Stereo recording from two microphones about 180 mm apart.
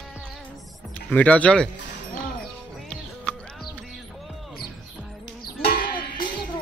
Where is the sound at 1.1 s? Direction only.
5° left (ahead or behind).